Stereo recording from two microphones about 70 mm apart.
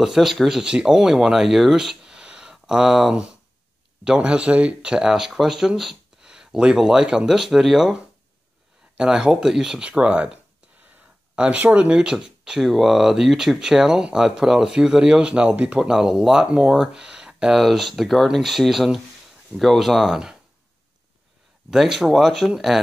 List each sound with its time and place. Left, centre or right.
0.0 s speech: centre
21.6 s speech: centre